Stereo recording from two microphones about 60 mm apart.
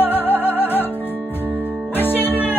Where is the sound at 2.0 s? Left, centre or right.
Left.